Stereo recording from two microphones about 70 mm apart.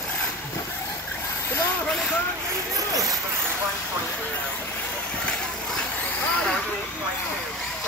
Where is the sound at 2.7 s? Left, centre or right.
Right.